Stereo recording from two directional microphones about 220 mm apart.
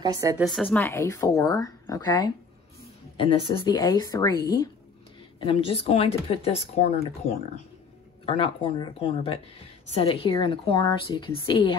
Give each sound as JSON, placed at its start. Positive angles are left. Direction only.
{"t": 0.0, "sound": "a woman's voice", "side_deg": -15}
{"t": 0.5, "sound": "a woman's voice", "side_deg": 0}
{"t": 0.8, "sound": "speech", "side_deg": 10}
{"t": 8.3, "sound": "speech", "side_deg": 25}